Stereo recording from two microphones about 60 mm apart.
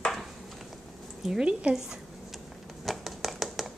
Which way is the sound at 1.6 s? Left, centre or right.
Centre.